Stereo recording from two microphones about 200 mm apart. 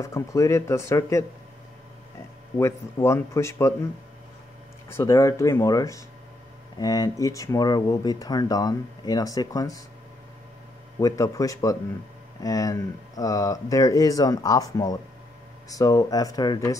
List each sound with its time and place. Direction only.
0.0 s speech: 15° left (ahead or behind)
2.5 s speech: 15° left (ahead or behind)
4.9 s speech: 15° left (ahead or behind)
11.0 s speech: 15° left (ahead or behind)